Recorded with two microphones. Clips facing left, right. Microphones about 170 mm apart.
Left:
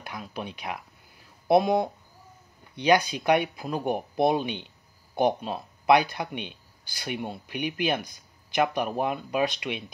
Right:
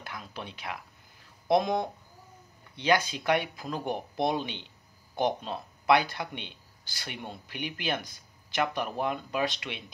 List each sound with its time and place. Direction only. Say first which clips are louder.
0.0 s speech: left 5 dB; 15° left (ahead or behind)